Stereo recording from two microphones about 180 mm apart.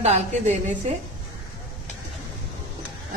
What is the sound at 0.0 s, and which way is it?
Speech, 40° right (ahead or behind).